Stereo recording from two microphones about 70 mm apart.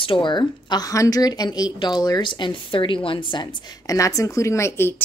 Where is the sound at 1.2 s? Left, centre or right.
Left.